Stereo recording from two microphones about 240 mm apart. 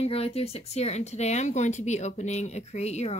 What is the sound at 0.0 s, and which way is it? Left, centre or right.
Speech, left.